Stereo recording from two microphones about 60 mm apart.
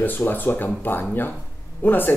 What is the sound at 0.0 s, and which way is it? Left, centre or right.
Speech, left.